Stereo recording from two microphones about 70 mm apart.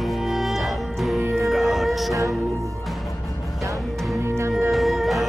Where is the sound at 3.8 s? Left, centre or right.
Centre.